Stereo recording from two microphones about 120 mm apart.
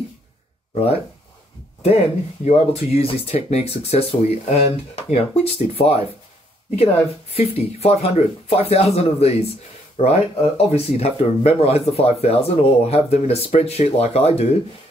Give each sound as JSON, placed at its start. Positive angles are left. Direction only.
{"t": 2.4, "sound": "speech", "side_deg": 60}